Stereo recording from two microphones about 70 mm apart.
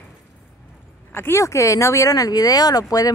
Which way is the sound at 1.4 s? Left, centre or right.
Left.